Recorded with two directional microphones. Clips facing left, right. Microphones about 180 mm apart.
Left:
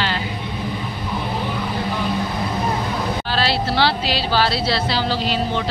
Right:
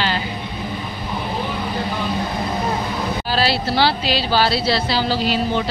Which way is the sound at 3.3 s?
5° right (ahead or behind).